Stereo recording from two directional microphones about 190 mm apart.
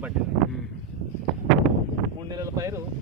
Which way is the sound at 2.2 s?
20° right (ahead or behind).